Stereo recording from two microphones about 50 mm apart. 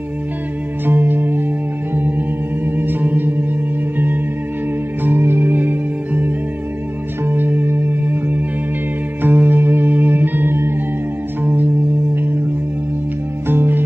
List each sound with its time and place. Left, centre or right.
0.8 s music: right
2.0 s singing bowl: right
5.0 s music: right
11.4 s music: right
13.5 s music: right